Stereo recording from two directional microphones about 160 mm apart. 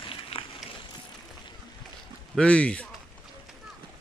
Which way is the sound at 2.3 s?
5° left (ahead or behind).